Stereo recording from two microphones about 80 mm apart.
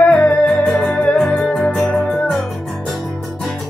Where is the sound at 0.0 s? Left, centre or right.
Centre.